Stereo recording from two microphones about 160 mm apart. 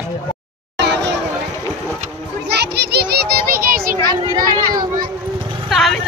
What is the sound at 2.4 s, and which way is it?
Children playing, 90° right.